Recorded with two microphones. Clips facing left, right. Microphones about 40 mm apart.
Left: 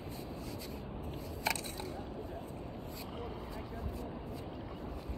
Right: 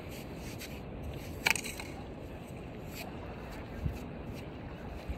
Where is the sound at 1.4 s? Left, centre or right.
Right.